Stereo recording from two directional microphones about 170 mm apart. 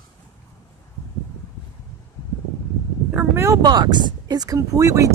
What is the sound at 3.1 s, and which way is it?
Speech, 15° right (ahead or behind).